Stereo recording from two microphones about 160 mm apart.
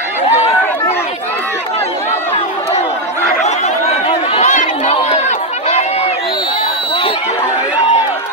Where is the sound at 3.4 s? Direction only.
45° left (ahead or behind).